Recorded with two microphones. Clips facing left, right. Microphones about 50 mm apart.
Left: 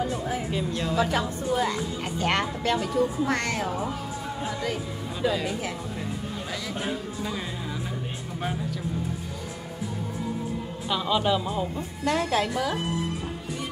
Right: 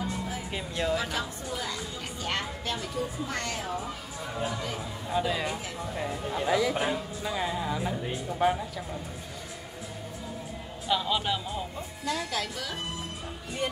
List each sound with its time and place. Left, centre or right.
0.5 s speech: centre
0.9 s a woman's voice: left
2.1 s speech: left
5.2 s speech: centre
10.9 s speech: centre
12.3 s a woman's voice: left